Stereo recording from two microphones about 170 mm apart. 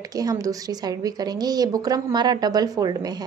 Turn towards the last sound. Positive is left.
turn(degrees=-20)  # may be behind; listen again after turning